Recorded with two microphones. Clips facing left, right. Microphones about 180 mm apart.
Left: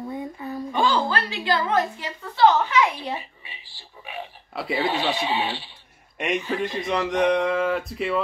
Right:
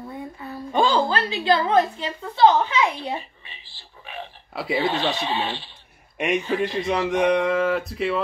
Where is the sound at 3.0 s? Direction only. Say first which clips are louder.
Right 1 dB; 10° left (ahead or behind).